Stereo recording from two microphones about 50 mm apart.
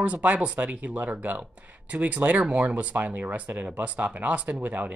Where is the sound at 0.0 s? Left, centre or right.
Right.